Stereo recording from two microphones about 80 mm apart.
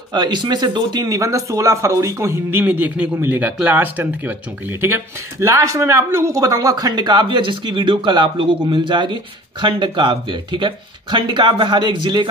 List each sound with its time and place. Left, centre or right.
0.1 s speech: right
2.6 s a man's voice: right